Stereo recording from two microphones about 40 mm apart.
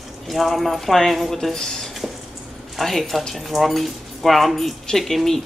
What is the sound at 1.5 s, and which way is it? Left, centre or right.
A woman's voice, centre.